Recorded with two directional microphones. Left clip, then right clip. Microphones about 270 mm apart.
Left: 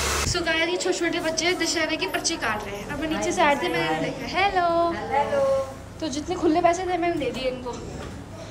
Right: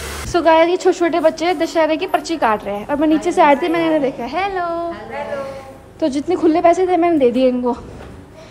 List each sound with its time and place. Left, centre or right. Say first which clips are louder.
0.3 s a woman's voice: right 16 dB; centre
6.1 s a woman's voice: right 6 dB; right